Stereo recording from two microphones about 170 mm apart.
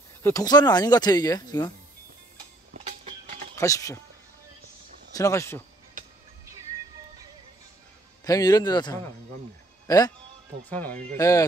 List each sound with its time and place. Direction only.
0.2 s speech: 20° left (ahead or behind)
3.5 s speech: 20° left (ahead or behind)
5.1 s speech: 20° left (ahead or behind)
8.2 s a man's voice: 20° left (ahead or behind)
10.7 s speech: 10° left (ahead or behind)
11.1 s speech: 20° left (ahead or behind)